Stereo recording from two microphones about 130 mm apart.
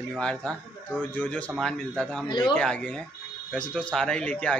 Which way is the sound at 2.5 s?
10° left (ahead or behind).